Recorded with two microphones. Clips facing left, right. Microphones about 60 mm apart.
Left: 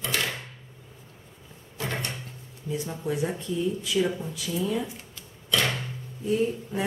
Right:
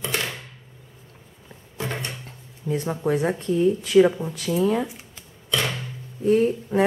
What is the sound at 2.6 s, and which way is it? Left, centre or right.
Speech, right.